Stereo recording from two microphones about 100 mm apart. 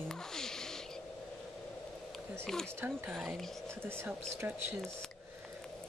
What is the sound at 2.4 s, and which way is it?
Speech, 5° left (ahead or behind).